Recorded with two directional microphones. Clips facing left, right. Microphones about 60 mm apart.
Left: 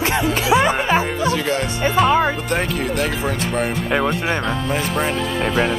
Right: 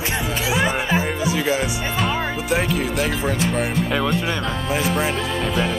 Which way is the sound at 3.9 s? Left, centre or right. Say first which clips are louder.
Left 5 dB; left.